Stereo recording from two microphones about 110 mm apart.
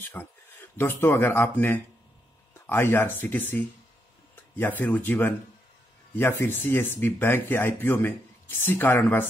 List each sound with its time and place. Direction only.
0.1 s speech: 20° left (ahead or behind)